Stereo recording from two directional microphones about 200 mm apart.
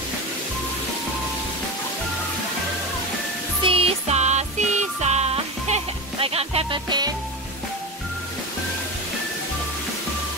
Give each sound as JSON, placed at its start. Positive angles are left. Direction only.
{"t": 3.6, "sound": "music", "side_deg": -30}